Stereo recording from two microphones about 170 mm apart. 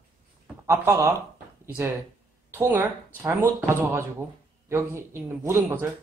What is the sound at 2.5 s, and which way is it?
Speech, 15° right (ahead or behind).